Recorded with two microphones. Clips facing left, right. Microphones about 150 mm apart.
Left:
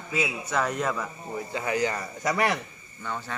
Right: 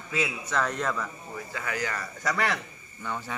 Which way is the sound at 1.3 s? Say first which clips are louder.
Left 6 dB; 25° left (ahead or behind).